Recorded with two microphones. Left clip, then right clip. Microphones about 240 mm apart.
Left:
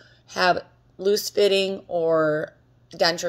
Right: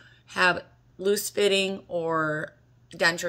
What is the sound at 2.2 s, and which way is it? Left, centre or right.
Speech, left.